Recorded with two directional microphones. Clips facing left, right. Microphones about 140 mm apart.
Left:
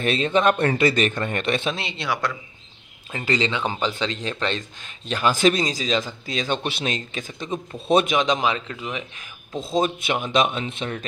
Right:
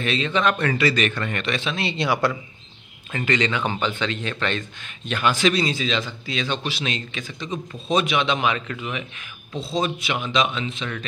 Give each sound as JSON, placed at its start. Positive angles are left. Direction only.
{"t": 0.0, "sound": "speech", "side_deg": 45}
{"t": 2.0, "sound": "a man's voice", "side_deg": 0}
{"t": 3.3, "sound": "speech", "side_deg": 25}
{"t": 9.6, "sound": "speech", "side_deg": 45}